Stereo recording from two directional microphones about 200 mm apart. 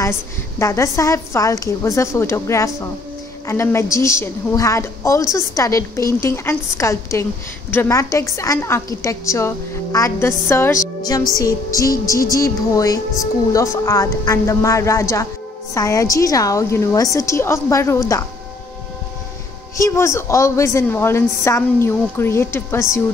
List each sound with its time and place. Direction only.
0.0 s a woman's voice: 15° left (ahead or behind)
11.0 s music: 20° left (ahead or behind)
11.3 s a woman's voice: 15° left (ahead or behind)
19.8 s a woman's voice: 15° left (ahead or behind)